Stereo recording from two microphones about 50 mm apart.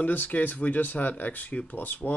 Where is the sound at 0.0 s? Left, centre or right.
Left.